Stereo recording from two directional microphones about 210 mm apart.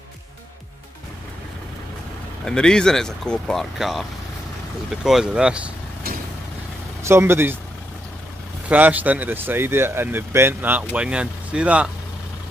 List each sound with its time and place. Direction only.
2.4 s speech: 5° left (ahead or behind)
6.0 s vehicle: 45° right (ahead or behind)
7.0 s speech: 10° right (ahead or behind)
8.6 s speech: 10° right (ahead or behind)